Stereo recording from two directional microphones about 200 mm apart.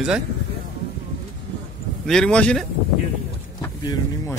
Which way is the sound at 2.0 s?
5° left (ahead or behind).